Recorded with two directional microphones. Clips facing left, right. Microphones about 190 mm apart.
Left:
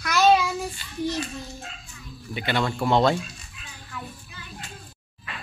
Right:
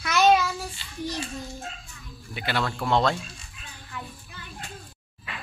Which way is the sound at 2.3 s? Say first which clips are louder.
Left 3 dB; centre (ahead or behind).